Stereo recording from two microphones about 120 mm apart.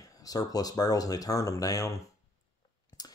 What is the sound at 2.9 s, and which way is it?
Clicking, 30° left (ahead or behind).